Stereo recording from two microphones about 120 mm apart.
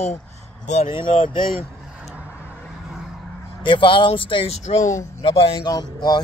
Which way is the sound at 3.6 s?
45° left (ahead or behind).